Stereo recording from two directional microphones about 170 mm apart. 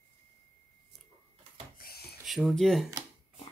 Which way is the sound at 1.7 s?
65° left (ahead or behind).